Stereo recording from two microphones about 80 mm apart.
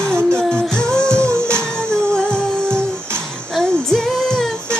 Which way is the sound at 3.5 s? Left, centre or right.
Centre.